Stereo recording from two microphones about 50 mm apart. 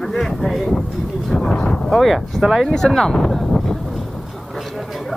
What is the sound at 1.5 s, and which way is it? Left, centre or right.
Thunder, centre.